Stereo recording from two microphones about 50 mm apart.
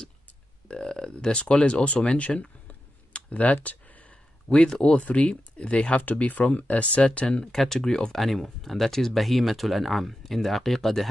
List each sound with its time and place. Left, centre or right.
0.7 s speech: centre
3.1 s clicking: left
4.5 s speech: centre
7.5 s speech: centre